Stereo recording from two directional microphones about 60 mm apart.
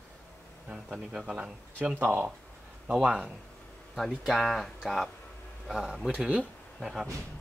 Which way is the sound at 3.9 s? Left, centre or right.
Centre.